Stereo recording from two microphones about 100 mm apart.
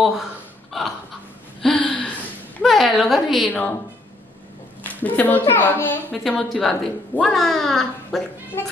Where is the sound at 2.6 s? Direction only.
Centre (ahead or behind).